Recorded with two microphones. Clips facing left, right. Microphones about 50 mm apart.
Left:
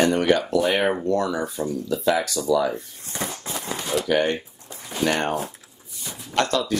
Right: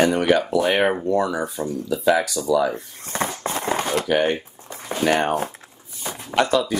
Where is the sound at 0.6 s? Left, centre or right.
Right.